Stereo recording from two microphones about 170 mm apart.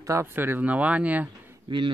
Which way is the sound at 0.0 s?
15° right (ahead or behind).